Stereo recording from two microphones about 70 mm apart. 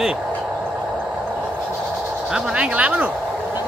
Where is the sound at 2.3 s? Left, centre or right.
Centre.